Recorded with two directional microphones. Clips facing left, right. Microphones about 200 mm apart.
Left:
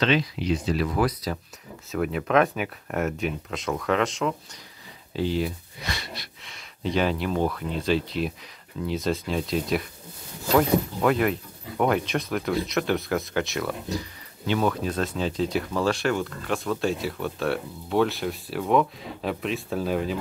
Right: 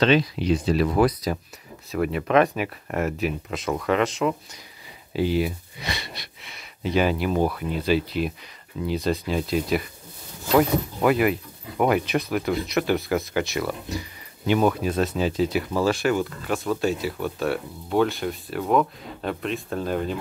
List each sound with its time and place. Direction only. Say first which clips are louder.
0.5 s speech: right 4 dB; 30° right (ahead or behind)
1.9 s speech: right 2 dB; centre (ahead or behind)
14.4 s speech: right 4 dB; 15° right (ahead or behind); by 20.2 s centre (ahead or behind)